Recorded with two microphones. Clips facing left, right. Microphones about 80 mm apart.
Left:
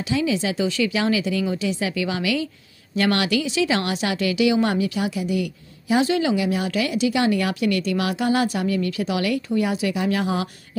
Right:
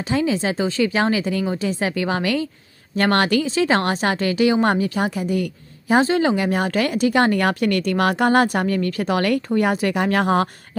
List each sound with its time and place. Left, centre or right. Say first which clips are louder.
0.1 s a woman's voice: right 2 dB; right